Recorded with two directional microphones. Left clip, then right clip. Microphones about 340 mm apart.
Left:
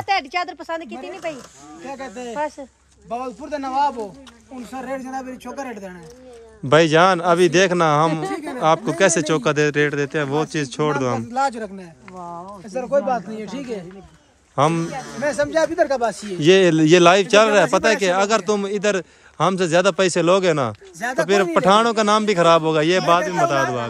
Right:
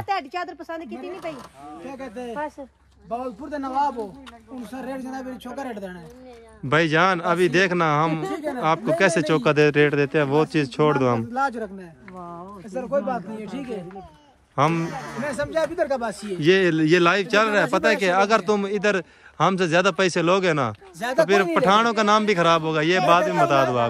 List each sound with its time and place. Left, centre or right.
0.0 s a man's voice: left
5.6 s speech: centre
11.3 s speech: left
14.5 s a man's voice: centre
15.2 s speech: left
16.3 s a man's voice: centre
21.5 s a man's voice: centre